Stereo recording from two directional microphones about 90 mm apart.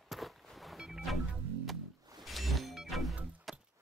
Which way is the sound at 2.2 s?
Centre (ahead or behind).